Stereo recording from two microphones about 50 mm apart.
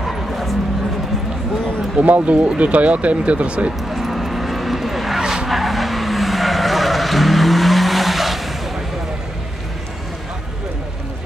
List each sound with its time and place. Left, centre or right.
0.0 s bow-wow: centre
2.0 s speech: right
3.9 s vehicle: centre
5.2 s vehicle: centre
5.5 s vehicle: centre